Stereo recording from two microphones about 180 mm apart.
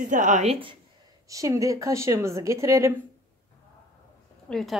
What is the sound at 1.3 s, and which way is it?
Speech, 20° right (ahead or behind).